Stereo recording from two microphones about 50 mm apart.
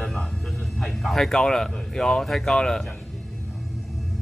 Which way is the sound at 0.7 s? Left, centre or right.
Centre.